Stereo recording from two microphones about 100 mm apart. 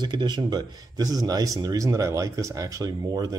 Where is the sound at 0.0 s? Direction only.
50° right (ahead or behind).